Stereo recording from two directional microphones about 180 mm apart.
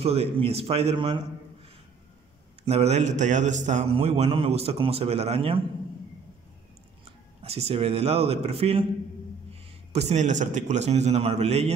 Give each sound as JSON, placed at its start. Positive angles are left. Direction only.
{"t": 0.0, "sound": "a man's voice", "side_deg": -35}
{"t": 2.6, "sound": "a man's voice", "side_deg": -35}
{"t": 7.4, "sound": "a man's voice", "side_deg": -35}